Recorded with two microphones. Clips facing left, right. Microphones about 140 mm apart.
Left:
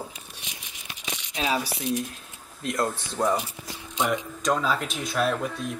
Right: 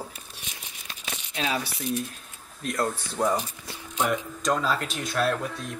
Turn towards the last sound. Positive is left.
turn(degrees=0)  # may be behind; listen again after turning